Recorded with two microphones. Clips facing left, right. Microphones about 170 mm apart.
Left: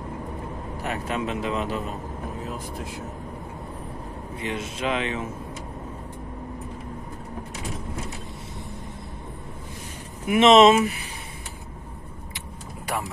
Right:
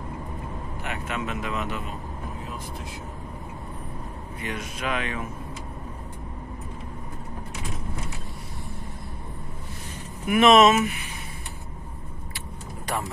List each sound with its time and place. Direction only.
0.8 s speech: 35° left (ahead or behind)
4.4 s speech: 25° left (ahead or behind)
10.2 s speech: 25° left (ahead or behind)
12.4 s vehicle: 10° left (ahead or behind)